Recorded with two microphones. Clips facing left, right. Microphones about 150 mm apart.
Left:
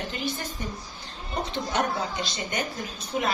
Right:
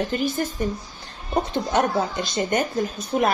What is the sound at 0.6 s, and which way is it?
Speech, 50° right (ahead or behind).